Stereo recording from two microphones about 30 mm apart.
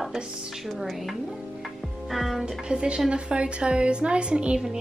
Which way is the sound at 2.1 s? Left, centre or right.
Centre.